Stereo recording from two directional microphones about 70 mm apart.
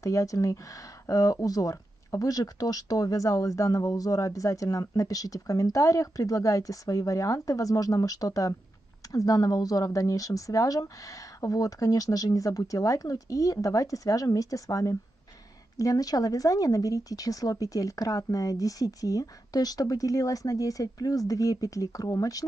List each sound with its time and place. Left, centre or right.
0.0 s speech: left